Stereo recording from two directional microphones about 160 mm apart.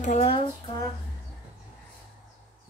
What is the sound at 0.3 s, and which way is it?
Speech, 35° left (ahead or behind).